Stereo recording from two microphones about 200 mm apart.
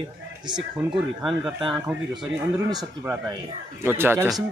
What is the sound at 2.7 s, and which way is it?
A man's voice, 20° right (ahead or behind).